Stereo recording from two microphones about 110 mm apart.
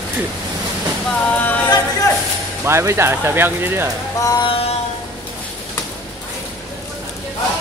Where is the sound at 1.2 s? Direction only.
15° left (ahead or behind).